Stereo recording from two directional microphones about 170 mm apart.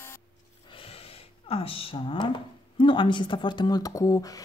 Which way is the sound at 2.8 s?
30° left (ahead or behind).